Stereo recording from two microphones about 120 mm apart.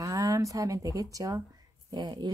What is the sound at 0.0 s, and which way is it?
Speech, 25° right (ahead or behind).